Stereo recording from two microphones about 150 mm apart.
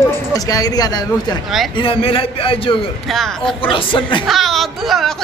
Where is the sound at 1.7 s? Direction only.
35° left (ahead or behind).